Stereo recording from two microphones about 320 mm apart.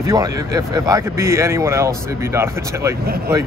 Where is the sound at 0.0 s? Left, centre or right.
Centre.